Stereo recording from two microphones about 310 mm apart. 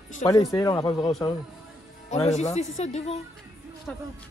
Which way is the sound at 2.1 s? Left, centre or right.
Centre.